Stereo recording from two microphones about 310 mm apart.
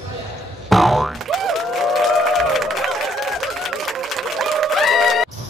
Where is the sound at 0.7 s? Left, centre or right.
Centre.